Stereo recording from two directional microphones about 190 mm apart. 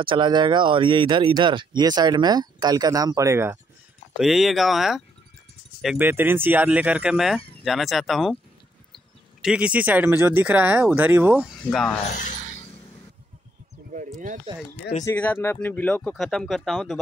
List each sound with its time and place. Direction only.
0.0 s speech: 25° right (ahead or behind)
4.2 s speech: centre (ahead or behind)
11.7 s speech: 5° left (ahead or behind)
12.2 s a sound: 40° left (ahead or behind)
15.0 s speech: 10° left (ahead or behind)